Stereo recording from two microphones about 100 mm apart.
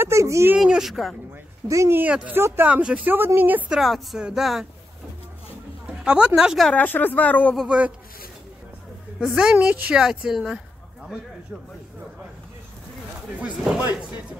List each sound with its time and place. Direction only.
0.0 s speech: 30° right (ahead or behind)
0.6 s speech: 5° right (ahead or behind)
1.7 s a woman's voice: 30° right (ahead or behind)
3.7 s speech: centre (ahead or behind)
6.0 s a woman's voice: 10° right (ahead or behind)
6.7 s speech: 15° left (ahead or behind)
7.5 s a woman's voice: 10° right (ahead or behind)
9.2 s a woman's voice: 5° right (ahead or behind)